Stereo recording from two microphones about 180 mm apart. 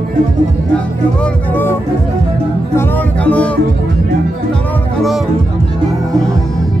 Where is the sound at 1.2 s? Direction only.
10° left (ahead or behind).